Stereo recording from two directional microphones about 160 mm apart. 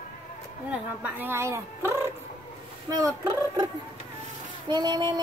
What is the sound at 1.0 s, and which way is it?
A woman's voice, 10° right (ahead or behind).